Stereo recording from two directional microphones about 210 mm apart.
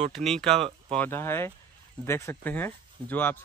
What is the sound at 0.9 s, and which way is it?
Speech, 10° left (ahead or behind).